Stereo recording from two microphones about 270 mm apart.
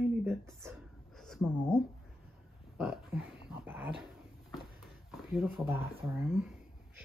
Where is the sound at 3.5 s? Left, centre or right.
Centre.